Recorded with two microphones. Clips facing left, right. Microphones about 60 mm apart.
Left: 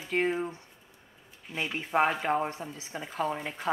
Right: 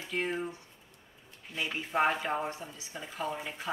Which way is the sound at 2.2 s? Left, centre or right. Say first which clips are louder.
Left 4 dB; left.